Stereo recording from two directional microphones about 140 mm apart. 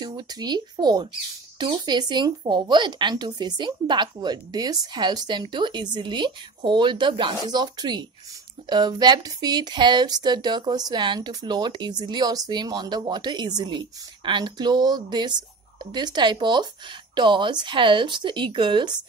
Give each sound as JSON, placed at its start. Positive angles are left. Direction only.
{"t": 0.0, "sound": "speech", "side_deg": -30}